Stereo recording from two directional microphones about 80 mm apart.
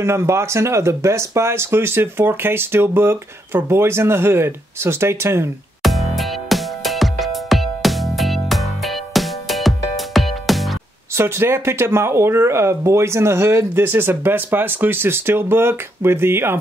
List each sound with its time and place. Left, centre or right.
0.0 s speech: right
5.8 s music: centre
11.1 s speech: right